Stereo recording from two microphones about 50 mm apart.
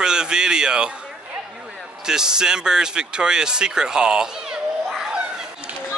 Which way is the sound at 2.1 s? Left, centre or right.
Centre.